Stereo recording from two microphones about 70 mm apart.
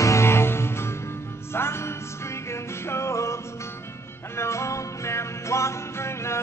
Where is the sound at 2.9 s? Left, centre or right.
Left.